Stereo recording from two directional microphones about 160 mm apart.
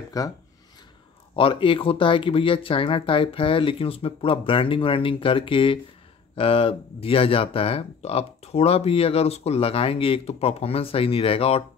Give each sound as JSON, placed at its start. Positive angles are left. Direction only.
{"t": 0.2, "sound": "speech", "side_deg": 20}
{"t": 1.3, "sound": "speech", "side_deg": 35}